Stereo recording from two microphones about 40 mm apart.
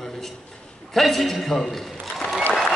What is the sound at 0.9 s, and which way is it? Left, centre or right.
Speech, centre.